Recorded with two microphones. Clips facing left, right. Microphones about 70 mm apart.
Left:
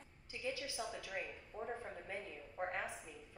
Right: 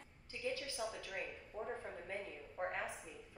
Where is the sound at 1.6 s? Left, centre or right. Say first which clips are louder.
Right 1 dB; left.